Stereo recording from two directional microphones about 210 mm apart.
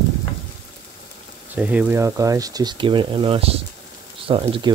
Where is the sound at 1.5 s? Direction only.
5° right (ahead or behind).